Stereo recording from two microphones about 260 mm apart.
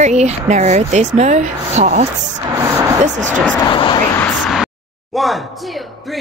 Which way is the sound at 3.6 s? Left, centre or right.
Centre.